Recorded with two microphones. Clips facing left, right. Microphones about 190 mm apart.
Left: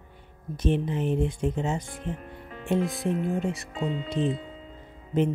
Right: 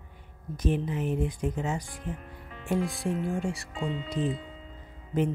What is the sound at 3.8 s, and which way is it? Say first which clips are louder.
Speech: left 3 dB; 45° left (ahead or behind).